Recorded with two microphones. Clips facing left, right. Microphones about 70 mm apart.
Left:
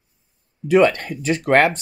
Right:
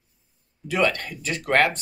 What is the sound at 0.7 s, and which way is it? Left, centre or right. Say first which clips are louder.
Speech: left 8 dB; left.